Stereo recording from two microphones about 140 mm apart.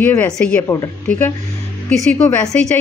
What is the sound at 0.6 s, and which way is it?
A woman's voice, 20° left (ahead or behind).